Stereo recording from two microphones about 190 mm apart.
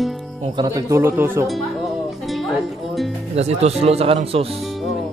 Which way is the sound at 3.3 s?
35° right (ahead or behind).